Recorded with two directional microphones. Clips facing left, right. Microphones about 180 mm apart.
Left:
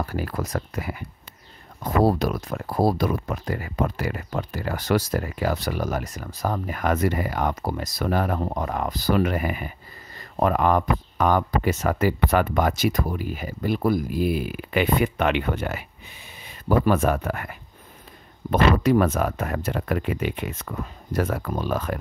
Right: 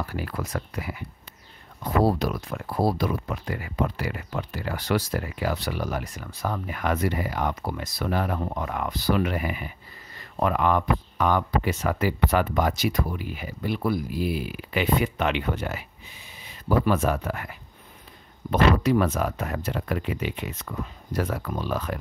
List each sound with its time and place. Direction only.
0.0 s speech: 45° left (ahead or behind)